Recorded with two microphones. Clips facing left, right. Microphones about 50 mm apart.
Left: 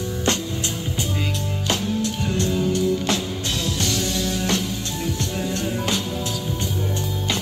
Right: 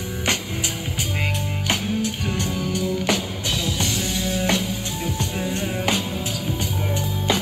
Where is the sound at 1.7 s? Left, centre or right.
Right.